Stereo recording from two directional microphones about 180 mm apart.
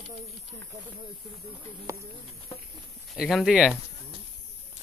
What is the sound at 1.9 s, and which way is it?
Speech, 15° right (ahead or behind).